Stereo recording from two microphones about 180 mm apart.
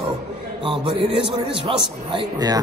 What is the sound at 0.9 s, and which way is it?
A man's voice, 30° right (ahead or behind).